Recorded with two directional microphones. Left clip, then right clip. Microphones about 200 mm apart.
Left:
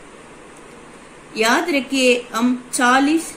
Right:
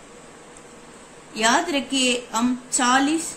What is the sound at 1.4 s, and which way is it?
Speech, 45° right (ahead or behind).